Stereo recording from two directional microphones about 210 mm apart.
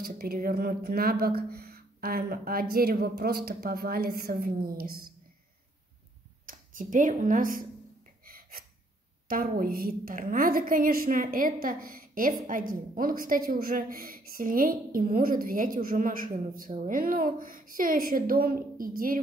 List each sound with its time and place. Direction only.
0.0 s a woman's voice: 45° right (ahead or behind)
6.4 s speech: 40° right (ahead or behind)
8.3 s gasp: 45° right (ahead or behind)
9.3 s a woman's voice: 45° right (ahead or behind)